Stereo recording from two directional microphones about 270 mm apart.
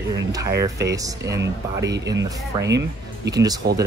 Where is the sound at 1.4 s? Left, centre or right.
Right.